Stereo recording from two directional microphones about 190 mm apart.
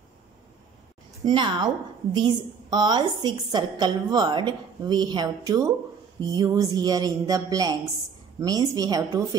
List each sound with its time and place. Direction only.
1.2 s a woman's voice: 25° right (ahead or behind)